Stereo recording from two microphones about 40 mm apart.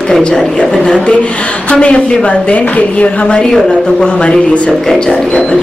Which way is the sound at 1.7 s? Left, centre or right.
Left.